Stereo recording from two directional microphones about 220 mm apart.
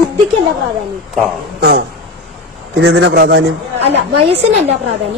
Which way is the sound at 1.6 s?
45° right (ahead or behind).